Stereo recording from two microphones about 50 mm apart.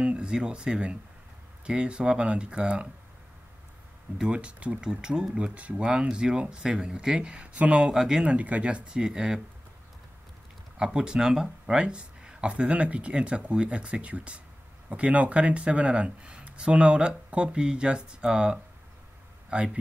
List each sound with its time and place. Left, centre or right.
0.0 s speech: centre
4.3 s speech: right
5.5 s speech: right
5.9 s speech: centre
7.9 s speech: centre
8.2 s speech: right
10.8 s speech: centre